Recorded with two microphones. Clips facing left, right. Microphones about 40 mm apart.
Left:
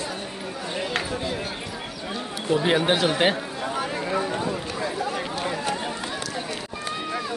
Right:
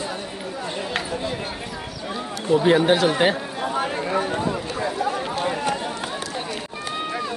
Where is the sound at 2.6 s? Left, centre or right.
Centre.